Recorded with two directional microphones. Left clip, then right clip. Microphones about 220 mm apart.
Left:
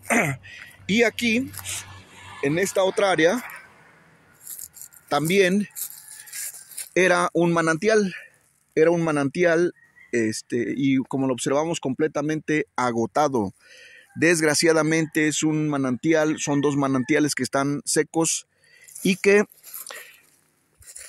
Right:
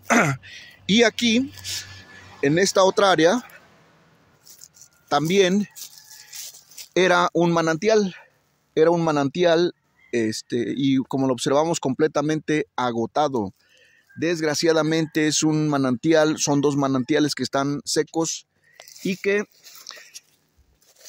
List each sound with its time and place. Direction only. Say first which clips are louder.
0.1 s speech: right 3 dB; 20° right (ahead or behind)
1.9 s music: even; 45° right (ahead or behind)
2.4 s speech: right 4 dB; 20° right (ahead or behind)
5.0 s speech: right 1 dB; 10° right (ahead or behind)
6.9 s speech: right 1 dB; 5° right (ahead or behind)
12.7 s speech: even; 5° left (ahead or behind)
13.7 s a sound: left 7 dB; 20° left (ahead or behind)
14.5 s speech: even; 5° left (ahead or behind)
19.0 s speech: left 5 dB; 25° left (ahead or behind)